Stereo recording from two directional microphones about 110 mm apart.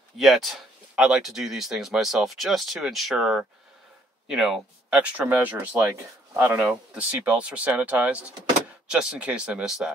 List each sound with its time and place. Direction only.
0.2 s speech: centre (ahead or behind); by 6.6 s 20° right (ahead or behind)
6.6 s speech: 10° right (ahead or behind)